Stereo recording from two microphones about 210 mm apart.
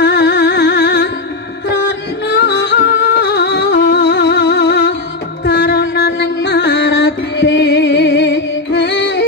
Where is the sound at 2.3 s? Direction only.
55° left (ahead or behind).